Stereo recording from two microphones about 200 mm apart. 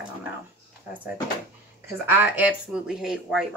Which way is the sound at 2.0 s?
10° right (ahead or behind).